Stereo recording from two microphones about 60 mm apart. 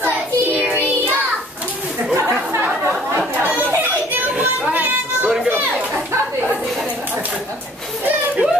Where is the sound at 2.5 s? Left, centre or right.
Right.